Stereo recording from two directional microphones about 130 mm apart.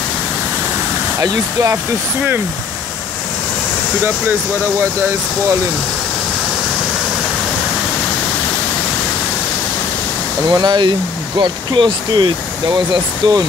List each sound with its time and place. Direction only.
1.2 s speech: 25° right (ahead or behind)
10.5 s speech: 35° right (ahead or behind)